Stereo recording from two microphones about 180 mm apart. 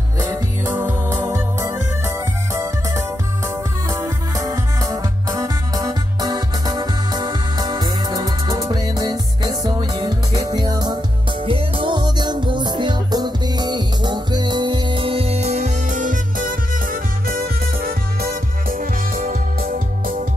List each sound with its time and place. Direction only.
0.2 s music: 15° right (ahead or behind); by 20.2 s 50° right (ahead or behind)